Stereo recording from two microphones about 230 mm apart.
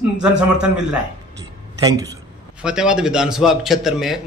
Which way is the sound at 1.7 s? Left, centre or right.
Centre.